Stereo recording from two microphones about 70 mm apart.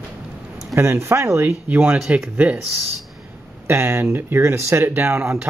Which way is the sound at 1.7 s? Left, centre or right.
Right.